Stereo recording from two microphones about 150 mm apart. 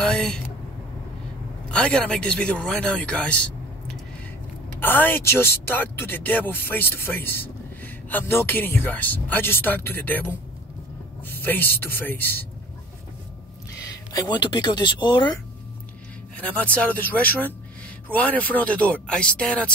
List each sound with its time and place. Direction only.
0.0 s a sound: 5° left (ahead or behind)
1.7 s speech: 5° left (ahead or behind)
4.7 s speech: 15° left (ahead or behind)
14.1 s speech: 30° left (ahead or behind)
16.3 s speech: 10° left (ahead or behind)